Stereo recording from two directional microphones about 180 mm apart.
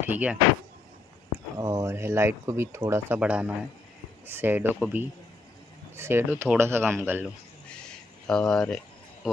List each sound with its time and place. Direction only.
0.0 s speech: 10° right (ahead or behind)
1.6 s speech: 15° right (ahead or behind)
8.3 s speech: 5° left (ahead or behind)